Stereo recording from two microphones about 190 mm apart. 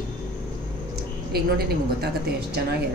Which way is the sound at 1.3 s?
55° right (ahead or behind).